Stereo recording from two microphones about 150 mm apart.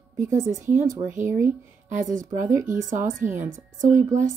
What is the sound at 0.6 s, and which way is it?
A woman's voice, 55° right (ahead or behind).